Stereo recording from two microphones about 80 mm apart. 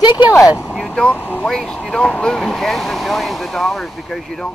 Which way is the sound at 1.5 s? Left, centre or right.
Centre.